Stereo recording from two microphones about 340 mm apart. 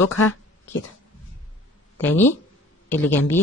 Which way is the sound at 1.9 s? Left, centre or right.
Centre.